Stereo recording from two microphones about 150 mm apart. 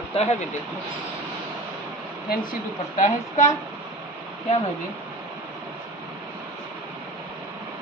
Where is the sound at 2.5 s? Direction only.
60° left (ahead or behind).